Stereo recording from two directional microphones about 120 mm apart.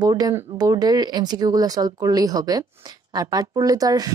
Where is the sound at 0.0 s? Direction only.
30° right (ahead or behind).